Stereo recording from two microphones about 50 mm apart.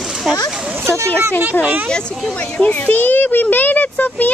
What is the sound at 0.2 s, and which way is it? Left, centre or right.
Speech, centre.